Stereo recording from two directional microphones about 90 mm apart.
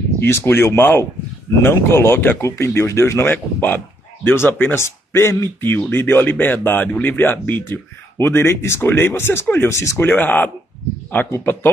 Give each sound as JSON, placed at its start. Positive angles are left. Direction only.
{"t": 0.2, "sound": "speech", "side_deg": 25}
{"t": 10.0, "sound": "speech", "side_deg": 20}